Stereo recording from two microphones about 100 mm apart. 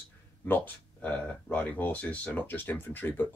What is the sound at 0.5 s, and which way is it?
Speech, 15° left (ahead or behind).